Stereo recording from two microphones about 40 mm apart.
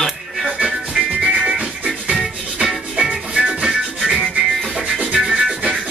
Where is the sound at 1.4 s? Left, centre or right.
Centre.